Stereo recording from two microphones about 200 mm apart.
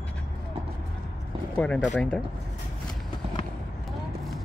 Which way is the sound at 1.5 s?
5° left (ahead or behind).